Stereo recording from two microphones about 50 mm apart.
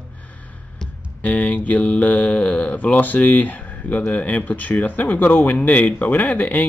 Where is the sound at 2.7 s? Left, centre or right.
Left.